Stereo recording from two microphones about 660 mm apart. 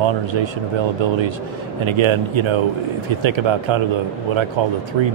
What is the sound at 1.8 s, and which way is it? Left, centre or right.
Speech, right.